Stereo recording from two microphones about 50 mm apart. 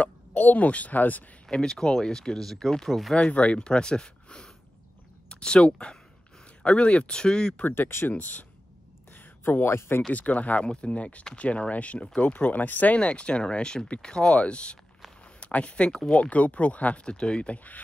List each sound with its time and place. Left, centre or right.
0.3 s speech: left
1.5 s speech: centre
3.2 s speech: left
7.6 s speech: left
8.1 s speech: left
9.1 s a sound: left
10.1 s speech: left
13.0 s speech: left